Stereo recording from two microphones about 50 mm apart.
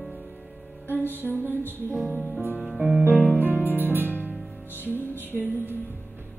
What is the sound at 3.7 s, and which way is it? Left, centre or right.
Music, right.